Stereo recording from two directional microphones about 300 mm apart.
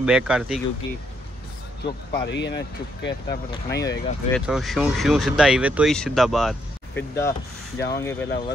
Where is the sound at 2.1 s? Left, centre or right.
Left.